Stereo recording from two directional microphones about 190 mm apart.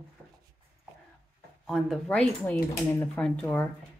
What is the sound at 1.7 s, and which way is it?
Speech, 5° left (ahead or behind).